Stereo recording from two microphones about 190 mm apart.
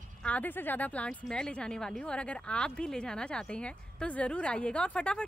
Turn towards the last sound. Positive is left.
turn(degrees=5)  # may be behind; listen again after turning